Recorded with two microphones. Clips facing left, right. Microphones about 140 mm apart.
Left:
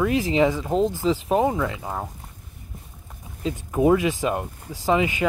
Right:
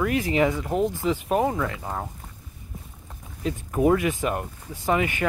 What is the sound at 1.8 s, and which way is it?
Speech, 5° left (ahead or behind).